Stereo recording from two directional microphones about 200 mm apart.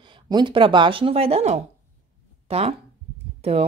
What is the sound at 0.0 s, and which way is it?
A woman's voice, 25° right (ahead or behind).